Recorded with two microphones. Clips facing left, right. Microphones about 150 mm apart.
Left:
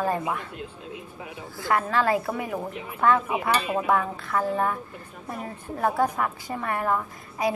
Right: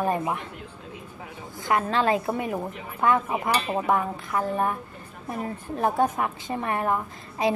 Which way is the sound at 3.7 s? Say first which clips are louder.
Even; 20° right (ahead or behind).